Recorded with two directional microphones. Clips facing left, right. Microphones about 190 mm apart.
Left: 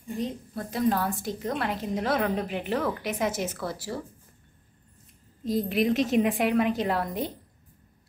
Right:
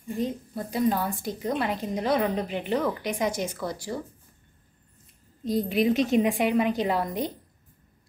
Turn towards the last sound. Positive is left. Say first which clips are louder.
# right 1 dB
turn(degrees=0)  # may be behind; listen again after turning